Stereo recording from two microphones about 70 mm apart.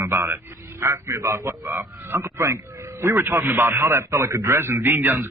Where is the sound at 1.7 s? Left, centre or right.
Right.